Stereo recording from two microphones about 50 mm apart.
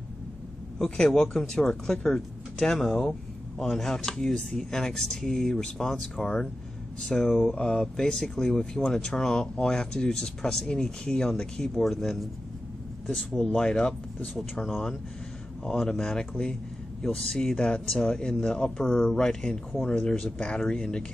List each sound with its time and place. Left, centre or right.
0.7 s speech: centre
13.5 s speech: centre
15.6 s speech: centre